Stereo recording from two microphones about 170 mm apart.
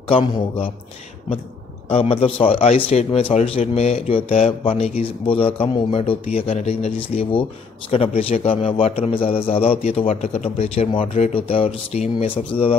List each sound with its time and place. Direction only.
0.1 s a man's voice: 35° left (ahead or behind)
1.9 s a man's voice: 35° left (ahead or behind)